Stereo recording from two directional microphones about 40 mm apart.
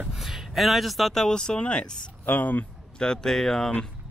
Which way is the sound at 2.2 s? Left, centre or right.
Left.